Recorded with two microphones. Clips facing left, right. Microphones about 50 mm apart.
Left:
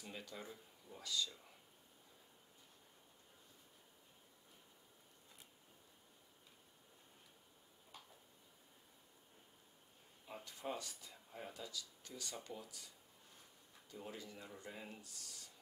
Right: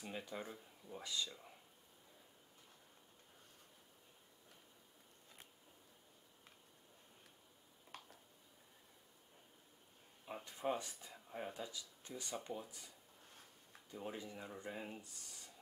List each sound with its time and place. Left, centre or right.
0.0 s speech: right
7.9 s tick-tock: right
10.2 s speech: right
13.9 s speech: right